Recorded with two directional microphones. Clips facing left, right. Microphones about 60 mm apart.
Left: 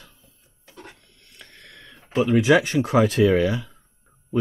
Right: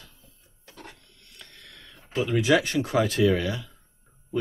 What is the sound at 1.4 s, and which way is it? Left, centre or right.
Speech, left.